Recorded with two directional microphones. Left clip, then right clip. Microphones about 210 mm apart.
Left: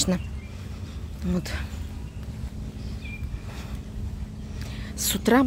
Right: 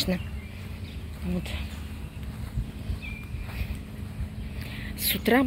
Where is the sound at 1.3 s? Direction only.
30° left (ahead or behind).